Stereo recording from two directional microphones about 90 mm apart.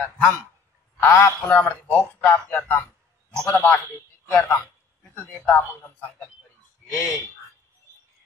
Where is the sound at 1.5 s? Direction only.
15° left (ahead or behind).